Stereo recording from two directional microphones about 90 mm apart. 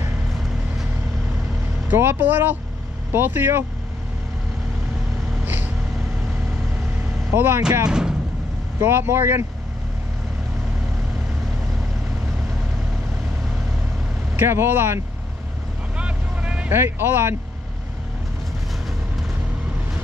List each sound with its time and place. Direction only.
1.9 s speech: 25° right (ahead or behind)
5.4 s vehicle: 20° right (ahead or behind)
7.3 s speech: 25° right (ahead or behind)
7.8 s speech: 10° right (ahead or behind)
8.7 s speech: 25° right (ahead or behind)
14.3 s speech: 25° right (ahead or behind)
16.0 s vehicle: 15° right (ahead or behind)
16.6 s speech: 25° right (ahead or behind)